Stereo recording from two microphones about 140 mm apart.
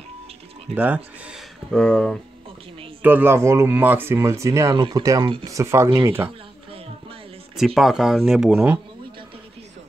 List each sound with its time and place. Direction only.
0.7 s speech: 10° right (ahead or behind)
1.7 s speech: 5° left (ahead or behind)
3.0 s speech: 15° right (ahead or behind)
5.2 s speech: 35° right (ahead or behind)
5.5 s speech: 20° right (ahead or behind)
7.5 s speech: centre (ahead or behind)